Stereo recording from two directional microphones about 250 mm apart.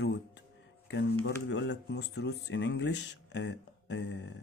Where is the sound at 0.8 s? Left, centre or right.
Left.